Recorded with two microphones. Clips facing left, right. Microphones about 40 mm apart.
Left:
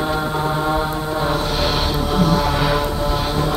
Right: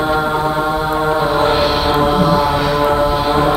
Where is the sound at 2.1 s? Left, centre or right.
Centre.